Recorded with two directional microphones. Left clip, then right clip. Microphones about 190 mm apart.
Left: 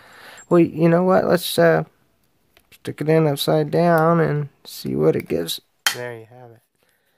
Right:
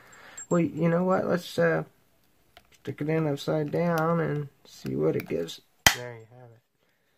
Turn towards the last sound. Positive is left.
turn(degrees=55)  # may be behind; listen again after turning